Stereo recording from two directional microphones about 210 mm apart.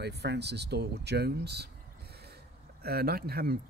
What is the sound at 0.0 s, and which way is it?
Speech, 55° right (ahead or behind).